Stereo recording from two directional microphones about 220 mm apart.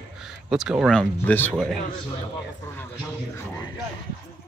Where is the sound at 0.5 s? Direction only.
Centre (ahead or behind).